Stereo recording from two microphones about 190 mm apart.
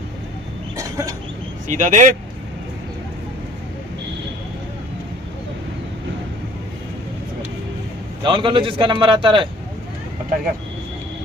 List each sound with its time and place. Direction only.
0.7 s a sound: 15° right (ahead or behind)
1.7 s speech: 40° right (ahead or behind)
8.2 s a man's voice: 25° right (ahead or behind)